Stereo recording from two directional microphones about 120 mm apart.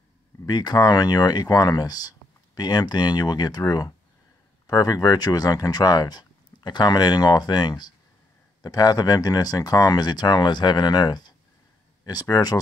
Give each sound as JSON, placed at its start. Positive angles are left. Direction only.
{"t": 0.5, "sound": "speech", "side_deg": 35}